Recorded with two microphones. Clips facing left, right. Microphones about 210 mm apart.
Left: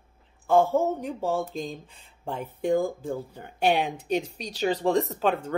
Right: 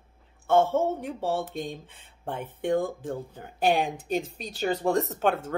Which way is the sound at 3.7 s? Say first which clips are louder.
Even; 45° right (ahead or behind).